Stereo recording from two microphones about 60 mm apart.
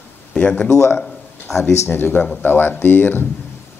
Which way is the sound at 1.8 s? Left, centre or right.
Left.